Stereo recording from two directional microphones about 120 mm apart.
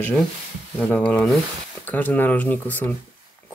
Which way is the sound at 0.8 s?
10° left (ahead or behind).